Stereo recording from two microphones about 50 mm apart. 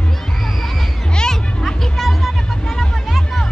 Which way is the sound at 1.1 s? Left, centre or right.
Centre.